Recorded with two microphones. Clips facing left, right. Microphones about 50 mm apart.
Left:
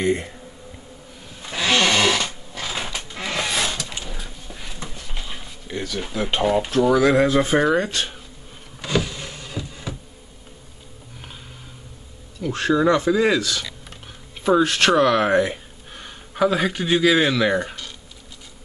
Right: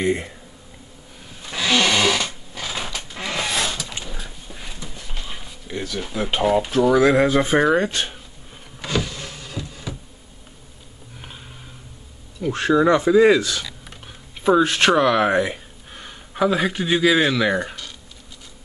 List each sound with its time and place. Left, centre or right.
0.0 s speech: centre
1.4 s sewing machine: centre
3.1 s a sound: centre
6.7 s speech: centre
8.8 s power windows: centre
9.5 s music: centre
12.4 s speech: centre
13.4 s speech: right
14.4 s speech: centre